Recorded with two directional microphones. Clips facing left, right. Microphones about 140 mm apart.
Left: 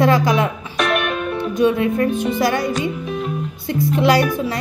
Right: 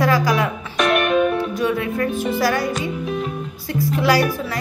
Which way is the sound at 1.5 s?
20° left (ahead or behind).